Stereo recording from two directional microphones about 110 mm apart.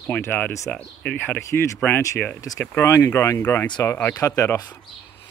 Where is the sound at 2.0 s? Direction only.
30° left (ahead or behind).